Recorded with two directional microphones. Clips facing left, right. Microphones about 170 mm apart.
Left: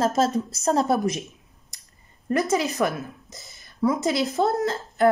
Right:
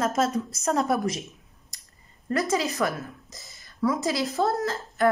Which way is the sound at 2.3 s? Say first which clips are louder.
Left 3 dB; 20° left (ahead or behind).